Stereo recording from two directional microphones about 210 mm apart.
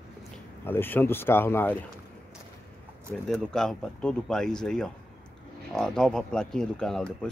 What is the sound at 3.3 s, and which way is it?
Speech, centre (ahead or behind).